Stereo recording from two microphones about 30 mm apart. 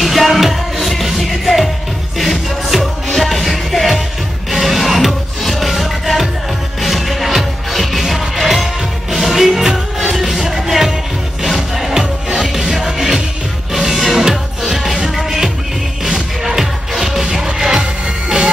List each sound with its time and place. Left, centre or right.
0.0 s music: centre